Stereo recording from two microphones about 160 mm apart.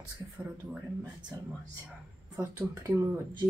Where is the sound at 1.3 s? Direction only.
20° right (ahead or behind).